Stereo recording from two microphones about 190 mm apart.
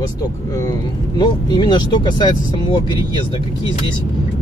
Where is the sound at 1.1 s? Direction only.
20° left (ahead or behind).